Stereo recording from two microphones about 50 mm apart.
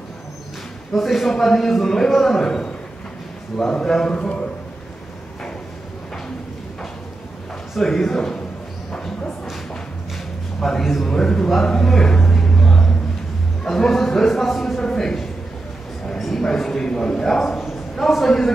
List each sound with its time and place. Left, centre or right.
0.9 s a man's voice: centre
3.7 s a man's voice: centre
7.8 s a man's voice: centre
10.6 s a man's voice: centre
11.1 s a man's voice: centre
11.5 s a sound: centre
13.7 s a man's voice: centre